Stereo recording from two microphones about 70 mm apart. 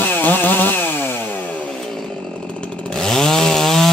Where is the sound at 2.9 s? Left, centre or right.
Centre.